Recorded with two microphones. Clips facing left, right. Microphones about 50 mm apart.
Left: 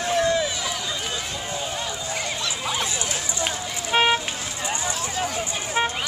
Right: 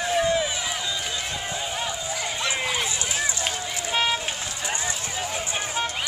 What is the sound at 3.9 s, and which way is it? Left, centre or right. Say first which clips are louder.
Vehicle: left 5 dB; left.